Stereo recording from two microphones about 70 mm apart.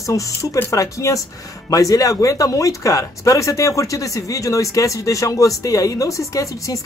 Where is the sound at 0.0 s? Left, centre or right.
Left.